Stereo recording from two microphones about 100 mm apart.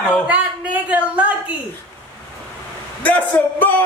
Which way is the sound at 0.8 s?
15° right (ahead or behind).